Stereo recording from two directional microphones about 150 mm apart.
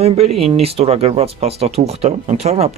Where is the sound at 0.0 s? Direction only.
45° right (ahead or behind).